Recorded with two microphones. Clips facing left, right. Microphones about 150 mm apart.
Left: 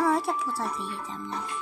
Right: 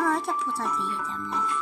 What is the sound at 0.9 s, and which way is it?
Speech, 35° left (ahead or behind).